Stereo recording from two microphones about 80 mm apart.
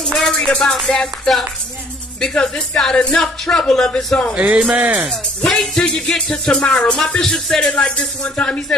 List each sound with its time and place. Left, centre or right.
0.0 s music: centre
2.1 s speech: centre
4.4 s speech: centre
5.4 s speech: centre